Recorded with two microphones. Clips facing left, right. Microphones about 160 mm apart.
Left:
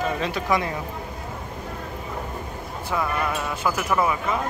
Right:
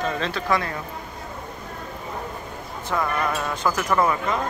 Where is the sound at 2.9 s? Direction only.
10° left (ahead or behind).